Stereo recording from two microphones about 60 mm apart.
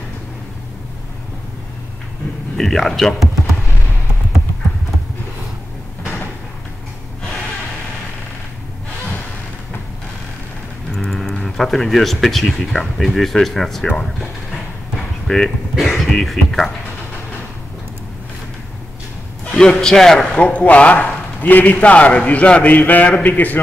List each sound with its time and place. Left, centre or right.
2.5 s speech: centre
10.9 s speech: centre
15.2 s speech: centre
15.7 s speech: centre
19.8 s a man's voice: centre
20.2 s a man's voice: left